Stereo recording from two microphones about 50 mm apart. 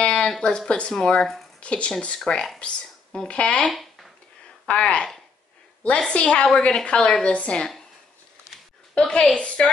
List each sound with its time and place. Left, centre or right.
0.0 s a sound: left
0.4 s a woman's voice: centre
1.6 s a woman's voice: left
3.7 s a sound: centre
4.6 s a woman's voice: left
6.1 s a woman's voice: left
8.9 s a woman's voice: left